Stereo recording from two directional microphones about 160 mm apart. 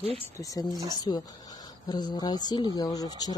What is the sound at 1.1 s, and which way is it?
Speech, 30° left (ahead or behind).